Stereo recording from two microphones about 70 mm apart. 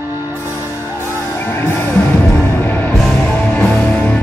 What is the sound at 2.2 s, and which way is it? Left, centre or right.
Music, left.